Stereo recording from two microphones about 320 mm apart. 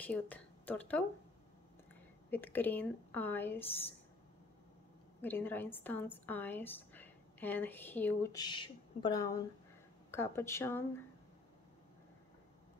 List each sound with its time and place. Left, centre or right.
0.0 s speech: centre
2.3 s speech: centre
5.2 s a woman's voice: centre